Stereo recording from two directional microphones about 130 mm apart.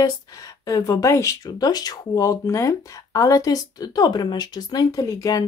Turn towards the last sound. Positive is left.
turn(degrees=30)  # may be behind; listen again after turning